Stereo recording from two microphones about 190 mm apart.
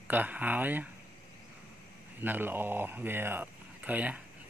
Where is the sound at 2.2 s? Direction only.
10° right (ahead or behind).